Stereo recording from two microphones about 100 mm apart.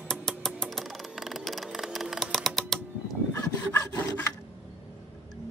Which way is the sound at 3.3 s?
25° left (ahead or behind).